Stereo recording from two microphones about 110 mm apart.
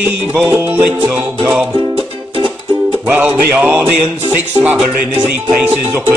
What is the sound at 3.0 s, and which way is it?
Music, 15° right (ahead or behind).